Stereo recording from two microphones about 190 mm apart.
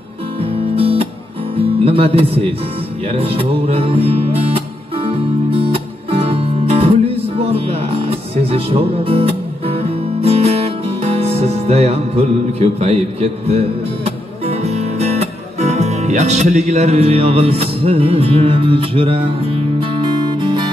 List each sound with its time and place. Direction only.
0.4 s music: 30° right (ahead or behind)
1.6 s speech: 30° right (ahead or behind)
3.1 s music: 30° right (ahead or behind)